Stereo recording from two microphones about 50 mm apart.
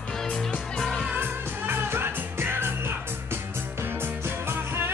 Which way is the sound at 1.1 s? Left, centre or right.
Right.